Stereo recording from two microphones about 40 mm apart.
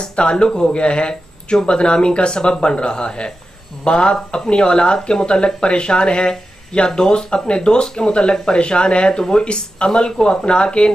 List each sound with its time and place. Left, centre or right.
0.1 s speech: left